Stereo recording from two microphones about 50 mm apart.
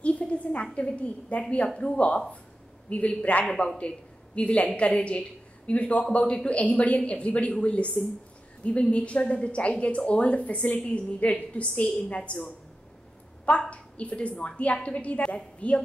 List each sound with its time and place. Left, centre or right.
0.0 s a sound: left
0.7 s a woman's voice: left
8.9 s a woman's voice: left
13.5 s a woman's voice: left